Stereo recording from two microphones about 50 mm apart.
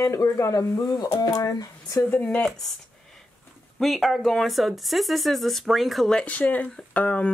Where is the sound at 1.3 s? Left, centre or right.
Left.